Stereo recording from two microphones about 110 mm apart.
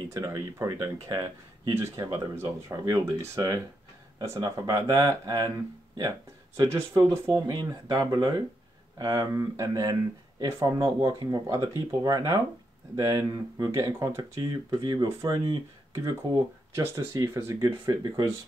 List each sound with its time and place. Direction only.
0.1 s speech: 30° right (ahead or behind)
17.6 s speech: 35° right (ahead or behind)